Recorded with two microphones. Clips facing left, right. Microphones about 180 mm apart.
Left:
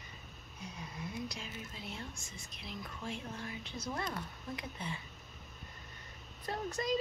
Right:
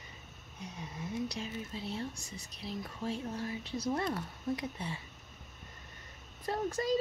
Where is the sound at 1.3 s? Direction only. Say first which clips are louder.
Right 6 dB; 30° right (ahead or behind).